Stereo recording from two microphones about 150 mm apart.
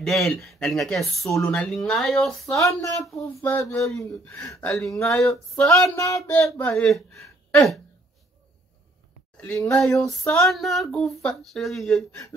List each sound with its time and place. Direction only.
0.0 s speech: centre (ahead or behind)
2.5 s speech: 20° left (ahead or behind)
5.0 s speech: 20° left (ahead or behind)
6.8 s speech: 5° left (ahead or behind)
7.2 s a sound: 20° left (ahead or behind)
9.4 s speech: 5° left (ahead or behind)
9.8 s speech: 20° left (ahead or behind)
10.4 s speech: centre (ahead or behind)